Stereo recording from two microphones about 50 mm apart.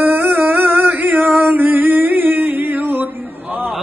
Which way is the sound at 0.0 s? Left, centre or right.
Right.